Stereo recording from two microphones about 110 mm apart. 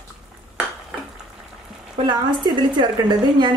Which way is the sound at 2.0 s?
45° right (ahead or behind).